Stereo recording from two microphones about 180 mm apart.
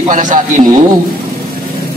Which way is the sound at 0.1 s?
45° right (ahead or behind).